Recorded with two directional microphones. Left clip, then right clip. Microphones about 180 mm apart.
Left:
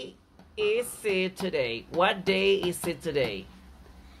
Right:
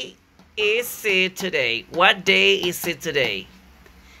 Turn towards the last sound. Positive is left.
turn(degrees=-5)  # may be behind; listen again after turning